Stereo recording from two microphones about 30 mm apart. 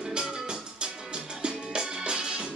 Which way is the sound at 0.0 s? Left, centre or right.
Right.